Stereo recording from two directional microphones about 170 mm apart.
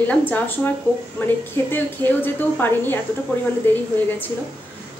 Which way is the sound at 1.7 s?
10° left (ahead or behind).